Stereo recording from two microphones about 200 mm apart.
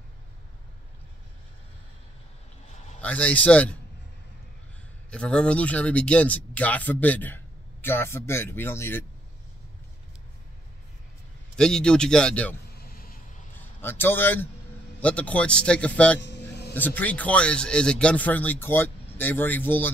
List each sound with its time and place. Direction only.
3.0 s speech: 5° left (ahead or behind)
5.1 s speech: 5° left (ahead or behind)
11.5 s a man's voice: 5° left (ahead or behind)
12.7 s vehicle: 50° left (ahead or behind)
13.6 s a man's voice: 10° left (ahead or behind)
16.2 s vehicle: 55° left (ahead or behind)
16.7 s speech: 10° left (ahead or behind)